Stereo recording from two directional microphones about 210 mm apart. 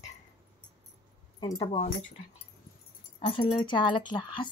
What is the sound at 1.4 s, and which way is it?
Speech, 20° left (ahead or behind).